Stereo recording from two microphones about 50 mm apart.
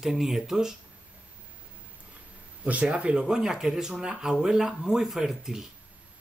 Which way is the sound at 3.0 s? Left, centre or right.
Centre.